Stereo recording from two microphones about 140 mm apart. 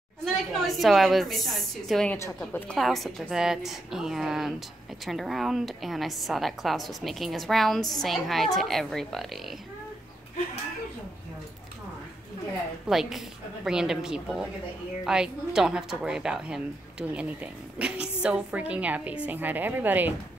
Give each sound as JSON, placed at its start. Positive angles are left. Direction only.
{"t": 0.2, "sound": "a woman's voice", "side_deg": 0}
{"t": 2.1, "sound": "a woman's voice", "side_deg": 20}
{"t": 2.7, "sound": "a woman's voice", "side_deg": 0}
{"t": 12.8, "sound": "a woman's voice", "side_deg": 0}